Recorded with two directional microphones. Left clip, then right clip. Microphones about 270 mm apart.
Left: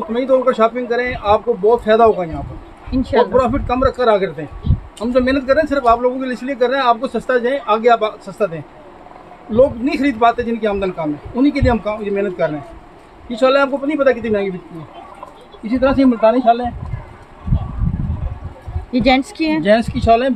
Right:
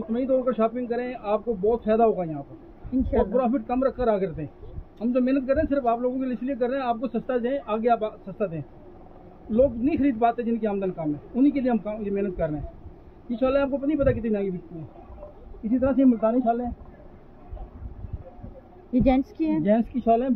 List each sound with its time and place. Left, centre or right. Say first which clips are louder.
0.1 s a man's voice: left 10 dB; centre
9.6 s a man's voice: left 8 dB; centre
15.8 s speech: left 9 dB; centre
18.9 s a man's voice: left 8 dB; centre